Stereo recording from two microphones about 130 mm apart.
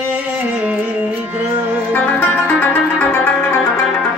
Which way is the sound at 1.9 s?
15° left (ahead or behind).